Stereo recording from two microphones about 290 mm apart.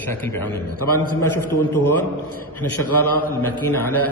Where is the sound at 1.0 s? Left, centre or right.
Left.